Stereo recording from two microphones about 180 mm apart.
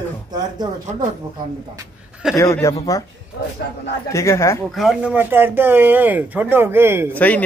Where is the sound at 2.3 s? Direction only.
15° left (ahead or behind).